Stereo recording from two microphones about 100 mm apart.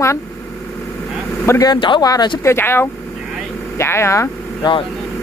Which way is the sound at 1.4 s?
40° left (ahead or behind).